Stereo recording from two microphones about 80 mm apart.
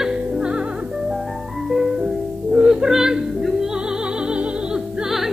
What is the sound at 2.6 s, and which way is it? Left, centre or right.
Music, centre.